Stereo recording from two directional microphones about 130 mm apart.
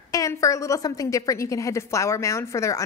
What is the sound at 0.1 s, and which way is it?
A woman's voice, 25° left (ahead or behind).